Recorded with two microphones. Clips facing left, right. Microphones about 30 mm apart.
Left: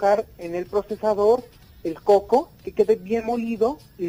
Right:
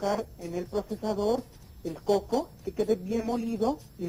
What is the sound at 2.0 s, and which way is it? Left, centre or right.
Speech, left.